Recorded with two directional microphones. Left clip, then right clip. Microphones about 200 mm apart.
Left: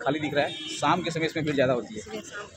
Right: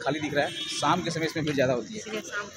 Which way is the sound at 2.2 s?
25° right (ahead or behind).